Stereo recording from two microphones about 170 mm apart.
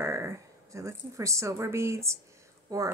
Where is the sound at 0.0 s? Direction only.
15° right (ahead or behind).